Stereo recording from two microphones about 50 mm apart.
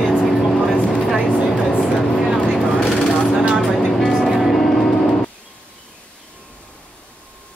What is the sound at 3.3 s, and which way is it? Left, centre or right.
Vehicle, centre.